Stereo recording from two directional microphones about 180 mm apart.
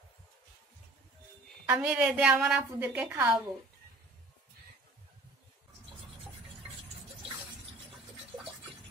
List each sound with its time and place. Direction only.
1.7 s a woman's voice: 5° right (ahead or behind)